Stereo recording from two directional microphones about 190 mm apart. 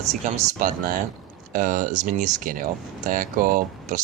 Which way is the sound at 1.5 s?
45° right (ahead or behind).